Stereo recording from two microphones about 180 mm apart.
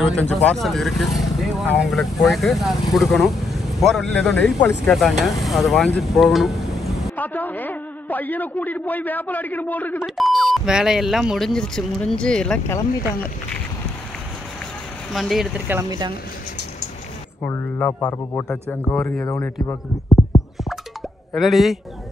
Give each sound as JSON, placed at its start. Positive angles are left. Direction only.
{"t": 0.0, "sound": "speech", "side_deg": 5}
{"t": 7.2, "sound": "a man's voice", "side_deg": 10}
{"t": 15.1, "sound": "speech", "side_deg": 0}
{"t": 17.4, "sound": "a man's voice", "side_deg": 10}
{"t": 21.4, "sound": "speech", "side_deg": 0}